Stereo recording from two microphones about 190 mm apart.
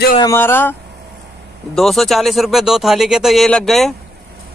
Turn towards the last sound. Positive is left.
turn(degrees=0)  # may be behind; listen again after turning